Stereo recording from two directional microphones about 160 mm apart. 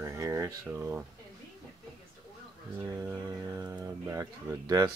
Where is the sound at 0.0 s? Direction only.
20° right (ahead or behind).